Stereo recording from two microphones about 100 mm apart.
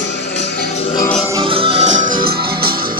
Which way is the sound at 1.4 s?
65° right (ahead or behind).